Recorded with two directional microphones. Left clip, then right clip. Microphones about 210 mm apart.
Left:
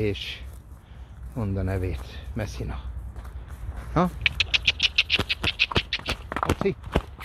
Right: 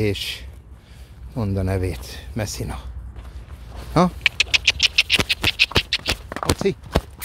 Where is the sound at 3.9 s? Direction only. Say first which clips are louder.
Right 5 dB; 30° right (ahead or behind).